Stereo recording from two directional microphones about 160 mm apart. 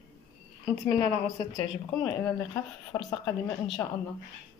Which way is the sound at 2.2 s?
20° left (ahead or behind).